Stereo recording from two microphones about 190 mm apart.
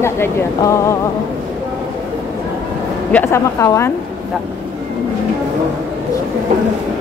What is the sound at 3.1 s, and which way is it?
Speech, 15° left (ahead or behind).